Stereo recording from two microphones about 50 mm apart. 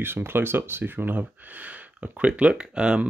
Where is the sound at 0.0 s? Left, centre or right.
Right.